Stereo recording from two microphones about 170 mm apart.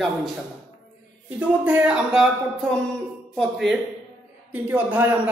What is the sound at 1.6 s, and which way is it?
A man's voice, 10° right (ahead or behind).